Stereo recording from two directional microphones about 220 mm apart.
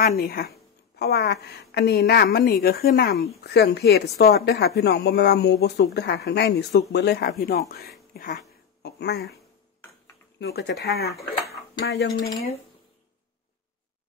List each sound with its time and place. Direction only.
0.2 s speech: 40° left (ahead or behind)
8.1 s a sound: 40° left (ahead or behind)
10.4 s speech: 50° left (ahead or behind)